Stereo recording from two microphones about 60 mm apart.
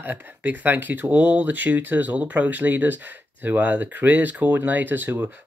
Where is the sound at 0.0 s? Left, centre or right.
Right.